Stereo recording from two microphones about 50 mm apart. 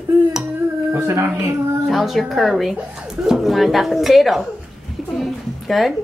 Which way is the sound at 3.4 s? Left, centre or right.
Centre.